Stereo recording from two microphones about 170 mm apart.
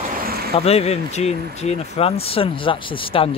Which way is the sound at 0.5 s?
35° left (ahead or behind).